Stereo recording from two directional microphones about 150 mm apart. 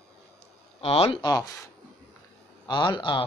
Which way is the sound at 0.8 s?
40° left (ahead or behind).